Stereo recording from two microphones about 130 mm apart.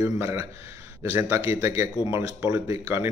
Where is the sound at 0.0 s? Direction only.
25° right (ahead or behind).